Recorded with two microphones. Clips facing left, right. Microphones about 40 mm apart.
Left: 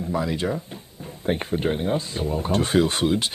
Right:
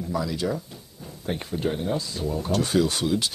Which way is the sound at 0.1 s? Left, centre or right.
Left.